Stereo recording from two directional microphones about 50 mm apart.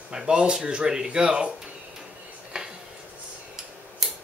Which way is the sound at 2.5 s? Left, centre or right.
Centre.